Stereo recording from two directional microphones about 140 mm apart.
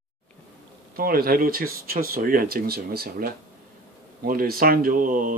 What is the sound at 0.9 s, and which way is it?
Speech, 90° right.